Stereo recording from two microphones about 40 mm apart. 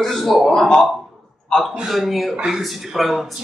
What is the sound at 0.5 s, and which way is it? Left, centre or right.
Speech, centre.